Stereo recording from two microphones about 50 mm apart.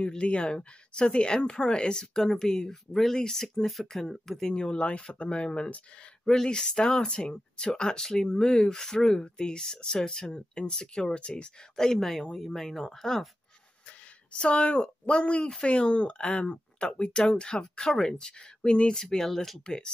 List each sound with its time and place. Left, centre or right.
0.0 s speech: left
11.7 s speech: centre
14.4 s speech: left; by 19.6 s centre
19.6 s speech: centre